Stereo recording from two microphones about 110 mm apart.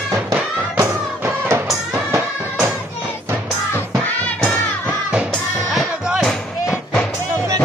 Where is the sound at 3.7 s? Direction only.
15° left (ahead or behind).